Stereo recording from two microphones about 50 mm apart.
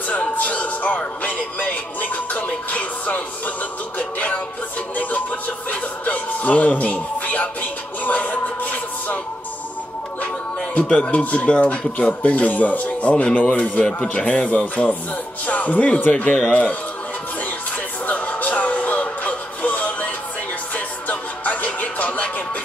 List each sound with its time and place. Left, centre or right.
0.1 s music: left
4.9 s speech: left
8.0 s a sound: left
10.2 s music: left
11.1 s speech: left
18.0 s music: left